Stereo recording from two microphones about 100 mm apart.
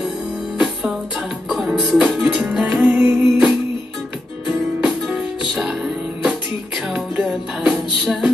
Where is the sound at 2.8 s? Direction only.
15° right (ahead or behind).